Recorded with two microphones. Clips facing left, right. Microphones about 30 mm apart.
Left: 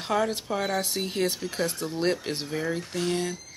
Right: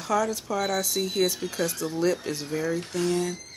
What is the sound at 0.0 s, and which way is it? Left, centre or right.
Speech, left.